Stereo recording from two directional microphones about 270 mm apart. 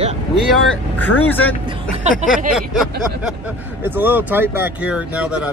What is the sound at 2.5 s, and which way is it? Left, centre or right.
Speech, centre.